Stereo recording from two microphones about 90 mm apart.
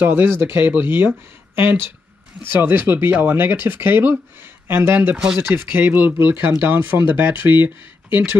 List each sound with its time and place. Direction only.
0.0 s speech: 25° right (ahead or behind)
5.1 s speech: 10° right (ahead or behind)
5.4 s speech: 25° right (ahead or behind)